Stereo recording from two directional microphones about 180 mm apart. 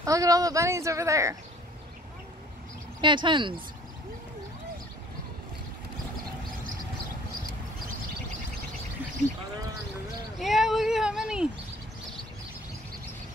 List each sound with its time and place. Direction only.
0.0 s speech: 20° right (ahead or behind)
3.0 s speech: 25° right (ahead or behind)
10.4 s speech: centre (ahead or behind)